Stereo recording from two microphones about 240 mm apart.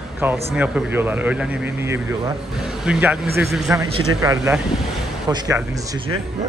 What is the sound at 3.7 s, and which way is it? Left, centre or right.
Speech, centre.